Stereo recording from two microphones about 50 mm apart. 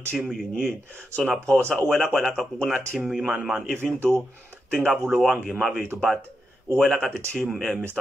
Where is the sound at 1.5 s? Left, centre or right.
Centre.